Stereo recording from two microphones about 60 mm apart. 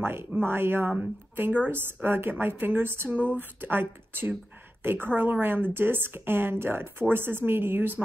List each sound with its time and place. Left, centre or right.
0.0 s speech: right